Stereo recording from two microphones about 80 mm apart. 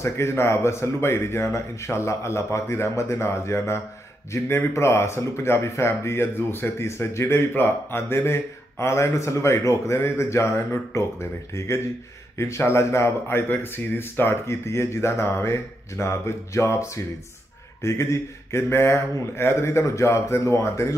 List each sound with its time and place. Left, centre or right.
0.0 s speech: left